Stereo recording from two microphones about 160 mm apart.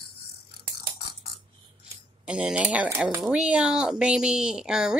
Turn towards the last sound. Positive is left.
turn(degrees=-5)  # may be behind; listen again after turning